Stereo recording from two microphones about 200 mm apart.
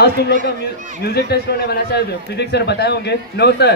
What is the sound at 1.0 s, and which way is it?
A man's voice, 50° left (ahead or behind).